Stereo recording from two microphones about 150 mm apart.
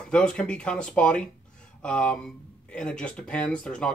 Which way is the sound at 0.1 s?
5° left (ahead or behind).